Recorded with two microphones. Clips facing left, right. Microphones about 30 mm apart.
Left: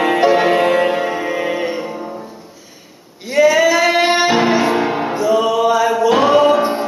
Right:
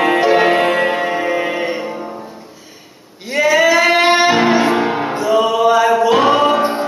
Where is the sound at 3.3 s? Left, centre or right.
Centre.